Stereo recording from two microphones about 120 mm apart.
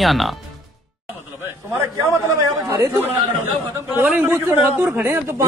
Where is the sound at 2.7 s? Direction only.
25° right (ahead or behind).